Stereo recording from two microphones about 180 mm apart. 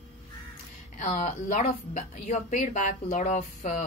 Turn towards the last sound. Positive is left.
turn(degrees=45)  # may be behind; listen again after turning